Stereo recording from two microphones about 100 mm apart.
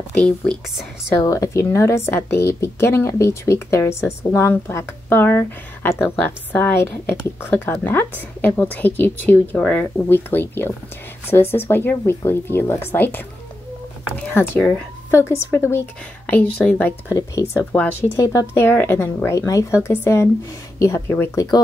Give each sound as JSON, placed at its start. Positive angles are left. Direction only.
{"t": 0.2, "sound": "speech", "side_deg": 5}
{"t": 1.2, "sound": "a woman's voice", "side_deg": 35}
{"t": 14.3, "sound": "a woman's voice", "side_deg": 25}
{"t": 17.1, "sound": "a woman's voice", "side_deg": 30}
{"t": 19.4, "sound": "speech", "side_deg": 35}
{"t": 19.8, "sound": "a woman's voice", "side_deg": 20}